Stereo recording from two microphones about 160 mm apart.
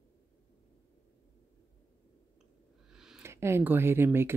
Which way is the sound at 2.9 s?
5° right (ahead or behind).